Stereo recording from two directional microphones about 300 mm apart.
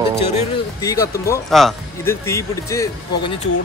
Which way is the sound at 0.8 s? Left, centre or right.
Centre.